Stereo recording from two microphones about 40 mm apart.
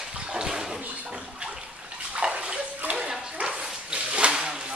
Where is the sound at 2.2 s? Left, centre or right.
Right.